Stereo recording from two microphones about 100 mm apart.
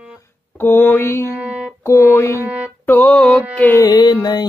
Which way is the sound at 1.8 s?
30° left (ahead or behind).